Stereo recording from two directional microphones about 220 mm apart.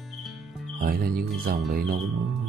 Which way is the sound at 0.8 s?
45° right (ahead or behind).